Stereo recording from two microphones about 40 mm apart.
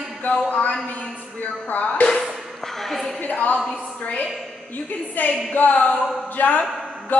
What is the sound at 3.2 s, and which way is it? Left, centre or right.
Speech, left.